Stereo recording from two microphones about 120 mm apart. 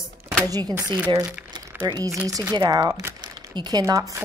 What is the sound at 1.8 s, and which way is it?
Speech, 35° right (ahead or behind).